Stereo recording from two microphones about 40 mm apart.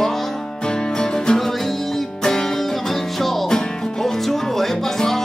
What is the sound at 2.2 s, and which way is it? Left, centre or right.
Music, centre.